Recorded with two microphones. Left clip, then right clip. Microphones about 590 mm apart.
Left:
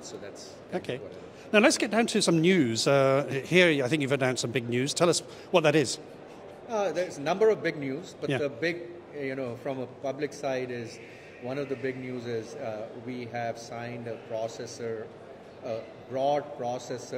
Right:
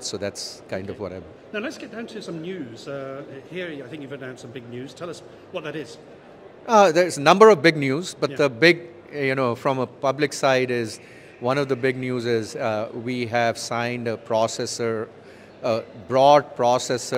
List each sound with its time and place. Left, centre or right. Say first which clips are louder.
0.0 s speech: right 12 dB; right
1.5 s speech: left 9 dB; left
6.7 s a man's voice: right 13 dB; right